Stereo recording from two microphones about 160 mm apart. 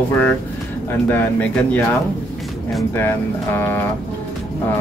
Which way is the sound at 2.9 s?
15° left (ahead or behind).